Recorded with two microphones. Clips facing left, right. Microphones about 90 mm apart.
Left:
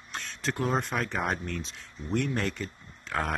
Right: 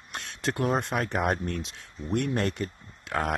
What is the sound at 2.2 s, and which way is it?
Speech, 50° right (ahead or behind).